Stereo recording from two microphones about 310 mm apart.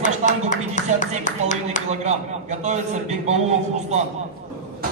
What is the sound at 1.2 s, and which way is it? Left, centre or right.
Speech, left.